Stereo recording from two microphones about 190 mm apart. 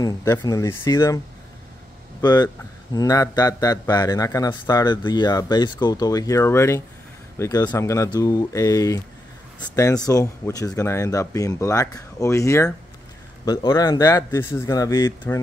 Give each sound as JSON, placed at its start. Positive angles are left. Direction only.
{"t": 0.0, "sound": "speech", "side_deg": 20}
{"t": 2.2, "sound": "a man's voice", "side_deg": 20}